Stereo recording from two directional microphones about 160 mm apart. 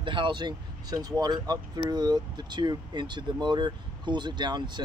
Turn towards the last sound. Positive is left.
turn(degrees=-30)  # may be behind; listen again after turning